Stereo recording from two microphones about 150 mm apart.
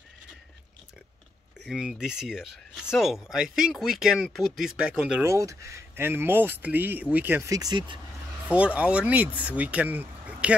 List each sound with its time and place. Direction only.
1.7 s speech: 5° right (ahead or behind)
5.2 s speech: 20° right (ahead or behind)
7.5 s speech: 30° right (ahead or behind)
8.5 s speech: 10° right (ahead or behind)